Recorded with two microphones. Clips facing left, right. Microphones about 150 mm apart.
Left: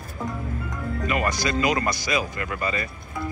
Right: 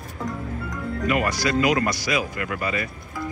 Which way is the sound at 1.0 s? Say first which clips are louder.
Right 2 dB; 5° right (ahead or behind).